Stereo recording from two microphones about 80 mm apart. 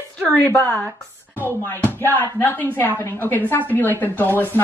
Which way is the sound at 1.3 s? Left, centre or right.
Left.